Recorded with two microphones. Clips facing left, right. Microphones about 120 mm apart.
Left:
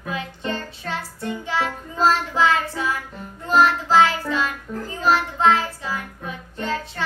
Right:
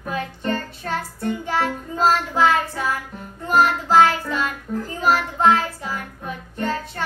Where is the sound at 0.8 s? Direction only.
50° right (ahead or behind).